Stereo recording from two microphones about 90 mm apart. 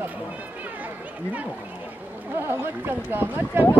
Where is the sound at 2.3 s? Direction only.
25° right (ahead or behind).